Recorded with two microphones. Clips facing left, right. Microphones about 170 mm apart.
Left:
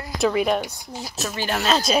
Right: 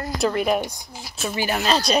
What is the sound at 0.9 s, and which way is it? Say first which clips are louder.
Speech: left 1 dB; 35° left (ahead or behind).